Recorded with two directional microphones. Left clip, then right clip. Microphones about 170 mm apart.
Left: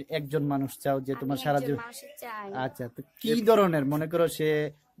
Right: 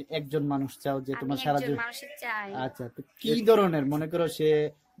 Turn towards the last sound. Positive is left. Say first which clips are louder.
# right 1 dB
turn(degrees=30)  # may be behind; listen again after turning